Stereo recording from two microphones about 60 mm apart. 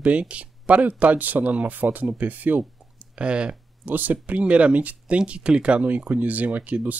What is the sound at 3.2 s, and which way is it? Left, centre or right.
Speech, centre.